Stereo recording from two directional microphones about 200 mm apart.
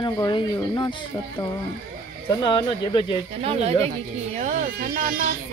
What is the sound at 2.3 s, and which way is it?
Speech, 20° left (ahead or behind).